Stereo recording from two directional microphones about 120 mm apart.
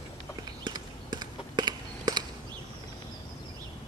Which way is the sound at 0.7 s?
35° right (ahead or behind).